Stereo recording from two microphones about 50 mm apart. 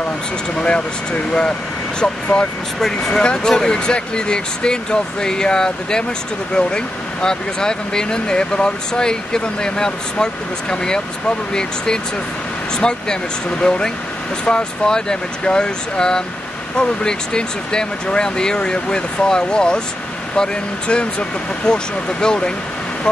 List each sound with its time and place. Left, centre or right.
0.6 s speech: left
2.8 s speech: centre
20.9 s speech: left